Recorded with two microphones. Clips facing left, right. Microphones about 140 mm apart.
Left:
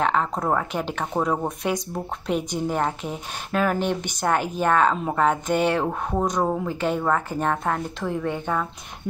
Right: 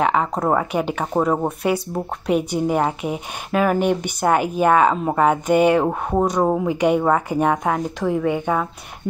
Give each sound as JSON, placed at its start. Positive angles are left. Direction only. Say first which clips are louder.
{"t": 0.0, "sound": "a woman's voice", "louder": "right 4 dB", "side_deg": -10}
{"t": 5.9, "sound": "a woman's voice", "louder": "right 5 dB", "side_deg": -20}